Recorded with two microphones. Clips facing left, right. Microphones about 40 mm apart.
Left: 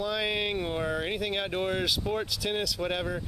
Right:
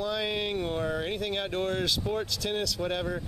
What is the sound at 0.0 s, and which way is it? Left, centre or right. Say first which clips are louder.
Speech: left 1 dB; centre.